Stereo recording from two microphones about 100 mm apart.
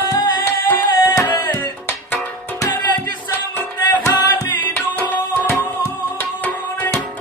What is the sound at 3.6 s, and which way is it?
Music, 30° left (ahead or behind).